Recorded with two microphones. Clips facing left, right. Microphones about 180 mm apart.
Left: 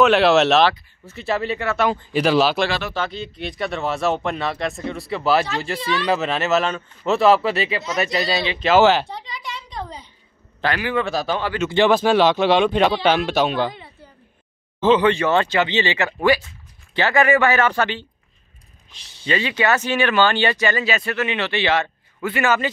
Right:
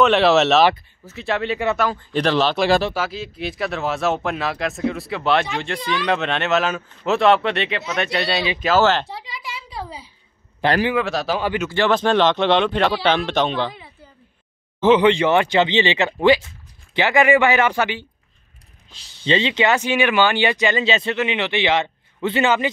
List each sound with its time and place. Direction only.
0.0 s speech: centre (ahead or behind)
2.9 s speech: 5° right (ahead or behind)
8.7 s speech: 15° left (ahead or behind)
9.0 s speech: 5° right (ahead or behind)
10.6 s speech: 15° right (ahead or behind)
11.0 s speech: centre (ahead or behind)
11.7 s speech: 15° left (ahead or behind)
14.8 s speech: 15° right (ahead or behind)
18.9 s speech: 25° right (ahead or behind)